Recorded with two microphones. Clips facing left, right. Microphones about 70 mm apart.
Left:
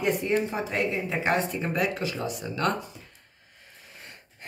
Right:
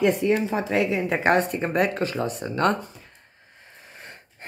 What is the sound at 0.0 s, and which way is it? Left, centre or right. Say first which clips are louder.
Speech: right 4 dB; right.